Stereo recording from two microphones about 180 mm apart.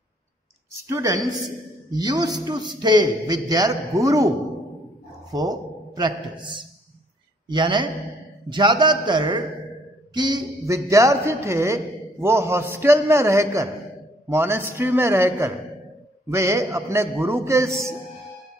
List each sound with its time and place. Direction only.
0.8 s a man's voice: 20° right (ahead or behind)
5.3 s a man's voice: 20° right (ahead or behind)